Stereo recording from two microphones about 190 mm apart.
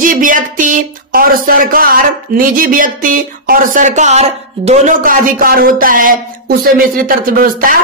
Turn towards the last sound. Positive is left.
turn(degrees=-50)  # may be behind; listen again after turning